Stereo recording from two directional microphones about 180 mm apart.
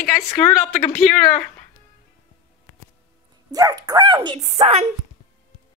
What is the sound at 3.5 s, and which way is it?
Speech, 20° right (ahead or behind).